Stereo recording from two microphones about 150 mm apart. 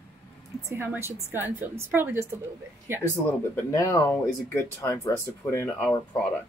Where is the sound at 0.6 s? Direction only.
15° right (ahead or behind).